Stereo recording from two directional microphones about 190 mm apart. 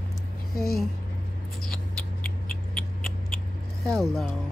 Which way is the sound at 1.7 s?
5° left (ahead or behind).